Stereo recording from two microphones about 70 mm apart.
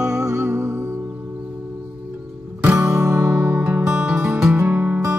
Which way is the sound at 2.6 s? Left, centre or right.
Right.